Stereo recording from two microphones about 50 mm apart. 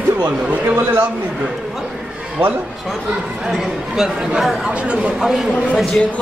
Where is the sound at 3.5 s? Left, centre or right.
Centre.